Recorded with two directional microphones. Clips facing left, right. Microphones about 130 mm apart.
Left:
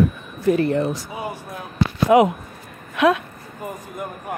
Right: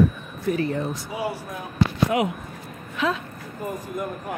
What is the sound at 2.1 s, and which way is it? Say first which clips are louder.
Speech: left 13 dB; 90° left.